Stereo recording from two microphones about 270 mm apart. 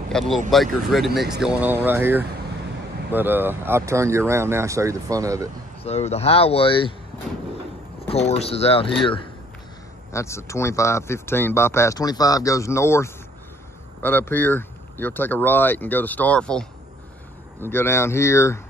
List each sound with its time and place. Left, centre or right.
0.1 s speech: centre
5.9 s speech: left
8.1 s speech: left
10.1 s speech: centre